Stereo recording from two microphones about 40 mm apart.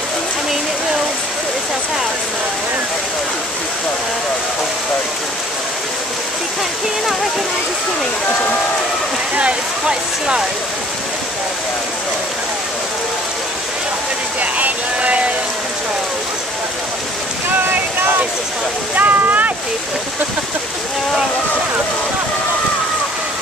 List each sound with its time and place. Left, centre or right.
9.3 s speech: right
14.4 s vehicle: right
18.9 s speech: right